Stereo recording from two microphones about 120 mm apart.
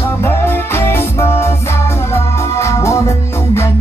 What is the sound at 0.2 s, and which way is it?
Music, 20° left (ahead or behind).